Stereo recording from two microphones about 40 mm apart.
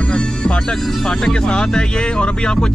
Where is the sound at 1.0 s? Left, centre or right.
Centre.